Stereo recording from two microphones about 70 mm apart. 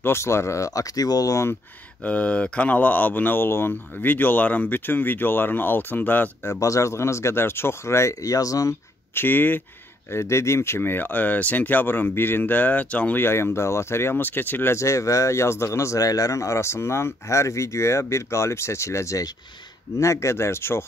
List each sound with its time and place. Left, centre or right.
0.0 s speech: left
2.0 s speech: centre
6.4 s speech: left
9.1 s speech: left
10.1 s speech: left
13.2 s speech: left
14.8 s speech: left
16.1 s speech: left